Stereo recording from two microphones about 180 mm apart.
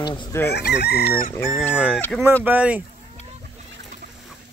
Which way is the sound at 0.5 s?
65° left (ahead or behind).